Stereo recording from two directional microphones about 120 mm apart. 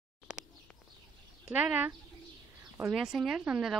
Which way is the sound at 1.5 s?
10° right (ahead or behind).